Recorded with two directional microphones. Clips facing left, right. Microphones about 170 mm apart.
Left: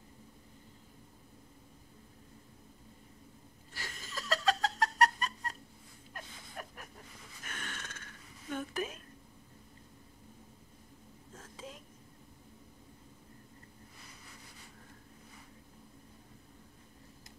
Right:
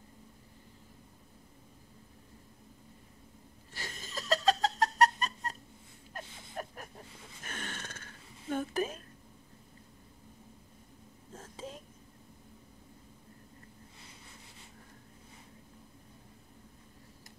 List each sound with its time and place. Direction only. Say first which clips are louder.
3.7 s laughter: right 2 dB; 25° right (ahead or behind)
6.1 s a sound: right 5 dB; 35° right (ahead or behind)
11.3 s whispering: right 4 dB; 30° right (ahead or behind)